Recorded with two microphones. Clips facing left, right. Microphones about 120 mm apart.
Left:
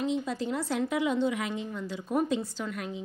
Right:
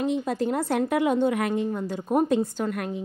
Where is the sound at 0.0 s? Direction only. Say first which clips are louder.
Right 5 dB; 55° right (ahead or behind).